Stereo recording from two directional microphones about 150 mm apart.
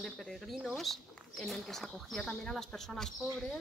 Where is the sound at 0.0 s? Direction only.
Centre (ahead or behind).